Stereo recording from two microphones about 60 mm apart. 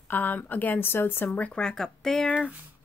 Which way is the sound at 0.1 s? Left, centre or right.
Left.